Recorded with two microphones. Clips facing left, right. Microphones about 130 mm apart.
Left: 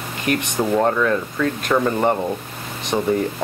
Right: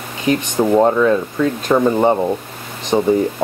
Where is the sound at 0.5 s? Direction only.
15° right (ahead or behind).